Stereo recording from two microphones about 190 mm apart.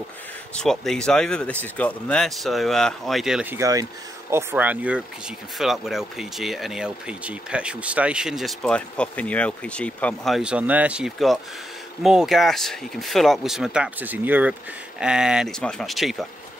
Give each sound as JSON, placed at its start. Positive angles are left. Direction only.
{"t": 0.6, "sound": "speech", "side_deg": 5}
{"t": 3.5, "sound": "speech", "side_deg": -20}